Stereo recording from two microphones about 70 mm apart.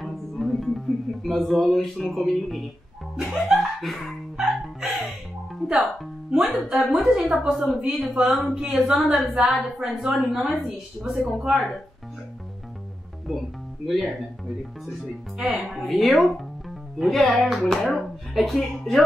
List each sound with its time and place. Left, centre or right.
0.0 s music: centre
2.1 s speech: centre
6.5 s speech: centre
7.5 s a woman's voice: centre
8.0 s speech: centre
13.8 s speech: centre
15.3 s speech: centre